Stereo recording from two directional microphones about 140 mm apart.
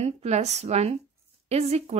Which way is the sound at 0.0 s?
50° right (ahead or behind).